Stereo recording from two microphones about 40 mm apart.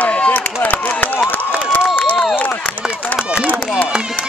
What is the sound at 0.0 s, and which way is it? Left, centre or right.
Chop, left.